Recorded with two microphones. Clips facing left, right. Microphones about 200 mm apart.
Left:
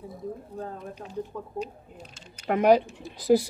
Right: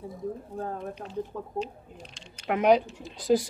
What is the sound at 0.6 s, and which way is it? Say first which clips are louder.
Speech: right 2 dB; 50° right (ahead or behind).